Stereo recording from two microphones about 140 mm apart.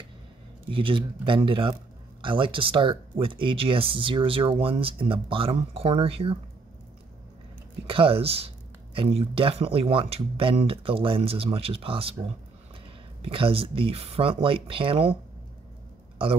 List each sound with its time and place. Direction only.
0.7 s speech: 40° right (ahead or behind)
7.8 s speech: 40° right (ahead or behind)
13.2 s speech: 40° right (ahead or behind)